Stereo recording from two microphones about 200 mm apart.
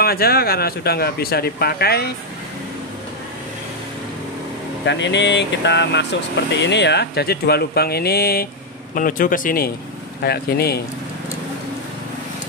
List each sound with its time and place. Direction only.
0.0 s a man's voice: 50° left (ahead or behind)
4.8 s a man's voice: 60° left (ahead or behind)